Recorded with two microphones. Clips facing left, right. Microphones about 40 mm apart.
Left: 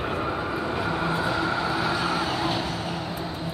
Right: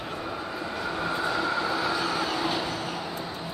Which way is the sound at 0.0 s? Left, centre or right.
Left.